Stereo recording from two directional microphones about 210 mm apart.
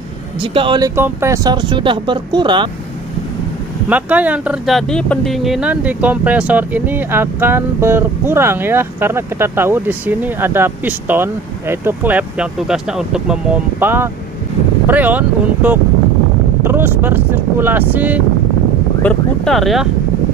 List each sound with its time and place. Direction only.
0.4 s speech: 25° right (ahead or behind)
3.9 s speech: 5° right (ahead or behind)
19.0 s speech: centre (ahead or behind)